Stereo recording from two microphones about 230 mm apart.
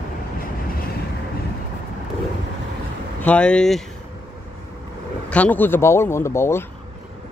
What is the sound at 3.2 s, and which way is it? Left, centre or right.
Speech, centre.